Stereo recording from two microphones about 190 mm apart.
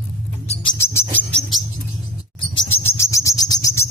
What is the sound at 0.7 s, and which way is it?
Bird, 15° left (ahead or behind).